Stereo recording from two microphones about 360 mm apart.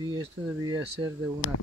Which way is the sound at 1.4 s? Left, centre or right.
Left.